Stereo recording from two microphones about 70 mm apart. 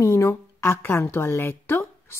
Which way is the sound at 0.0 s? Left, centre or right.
Left.